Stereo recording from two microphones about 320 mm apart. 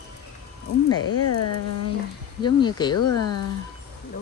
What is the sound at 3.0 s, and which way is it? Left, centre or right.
Speech, left.